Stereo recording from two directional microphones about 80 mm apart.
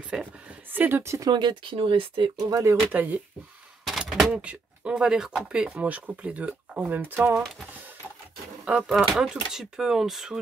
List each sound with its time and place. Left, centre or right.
0.1 s speech: centre
0.7 s speech: right
1.0 s speech: right
1.3 s speech: right
2.9 s speech: right
3.8 s a sound: centre
4.4 s speech: centre; by 7.4 s right
8.6 s speech: centre
8.9 s speech: centre